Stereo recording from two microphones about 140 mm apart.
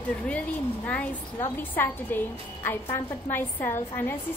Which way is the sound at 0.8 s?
10° left (ahead or behind).